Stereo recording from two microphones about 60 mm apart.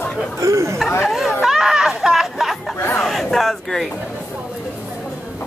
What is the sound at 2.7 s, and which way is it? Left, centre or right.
Chatter, left.